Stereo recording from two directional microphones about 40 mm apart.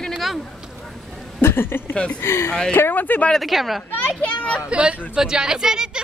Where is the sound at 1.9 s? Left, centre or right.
Left.